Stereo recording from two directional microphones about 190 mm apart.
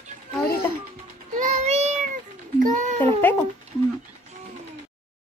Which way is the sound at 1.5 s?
35° right (ahead or behind).